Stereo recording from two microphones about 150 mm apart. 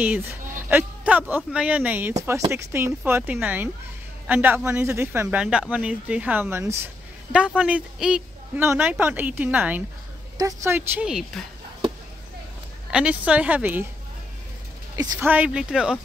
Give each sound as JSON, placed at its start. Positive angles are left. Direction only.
{"t": 0.0, "sound": "speech", "side_deg": -10}
{"t": 11.1, "sound": "a woman's voice", "side_deg": -5}
{"t": 12.9, "sound": "speech", "side_deg": -10}
{"t": 15.1, "sound": "speech", "side_deg": -10}